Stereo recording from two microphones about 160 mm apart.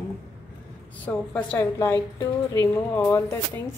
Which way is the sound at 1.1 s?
10° left (ahead or behind).